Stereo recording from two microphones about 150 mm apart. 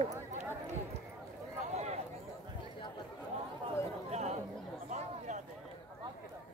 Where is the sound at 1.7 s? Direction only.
45° right (ahead or behind).